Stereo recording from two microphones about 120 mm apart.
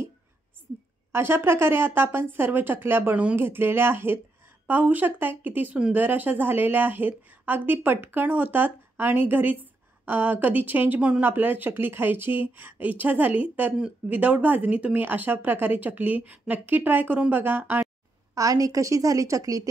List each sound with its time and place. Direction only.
1.1 s speech: 20° right (ahead or behind)
18.3 s speech: 30° right (ahead or behind)